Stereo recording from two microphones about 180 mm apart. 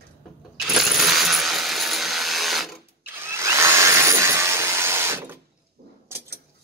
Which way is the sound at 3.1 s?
15° right (ahead or behind).